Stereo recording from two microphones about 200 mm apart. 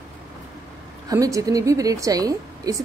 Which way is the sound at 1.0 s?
15° right (ahead or behind).